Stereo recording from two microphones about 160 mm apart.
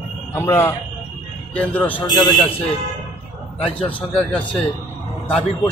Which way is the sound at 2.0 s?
25° left (ahead or behind).